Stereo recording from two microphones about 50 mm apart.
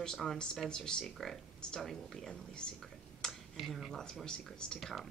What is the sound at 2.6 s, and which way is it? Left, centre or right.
Speech, centre.